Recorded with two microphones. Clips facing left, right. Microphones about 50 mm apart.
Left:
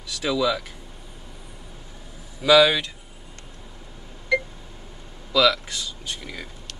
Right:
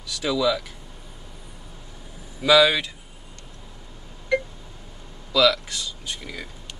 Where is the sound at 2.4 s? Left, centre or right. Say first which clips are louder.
Left 1 dB; centre.